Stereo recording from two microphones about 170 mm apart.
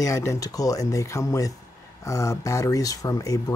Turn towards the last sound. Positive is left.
turn(degrees=20)  # may be behind; listen again after turning